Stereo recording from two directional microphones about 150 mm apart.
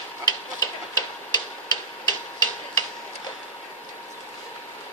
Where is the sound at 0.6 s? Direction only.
25° left (ahead or behind).